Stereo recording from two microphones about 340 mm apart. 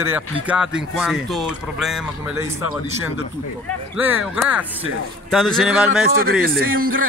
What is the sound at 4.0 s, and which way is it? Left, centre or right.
A man's voice, centre.